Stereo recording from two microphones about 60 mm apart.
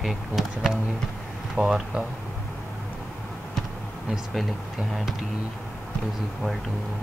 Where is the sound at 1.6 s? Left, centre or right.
Centre.